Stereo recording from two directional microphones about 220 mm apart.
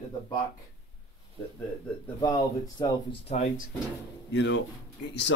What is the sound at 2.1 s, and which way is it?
Speech, 20° left (ahead or behind).